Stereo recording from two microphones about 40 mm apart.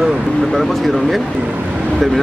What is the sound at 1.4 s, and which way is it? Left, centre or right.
Speech, right.